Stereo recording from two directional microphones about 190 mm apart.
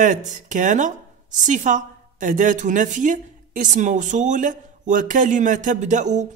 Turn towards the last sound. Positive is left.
turn(degrees=-40)  # may be behind; listen again after turning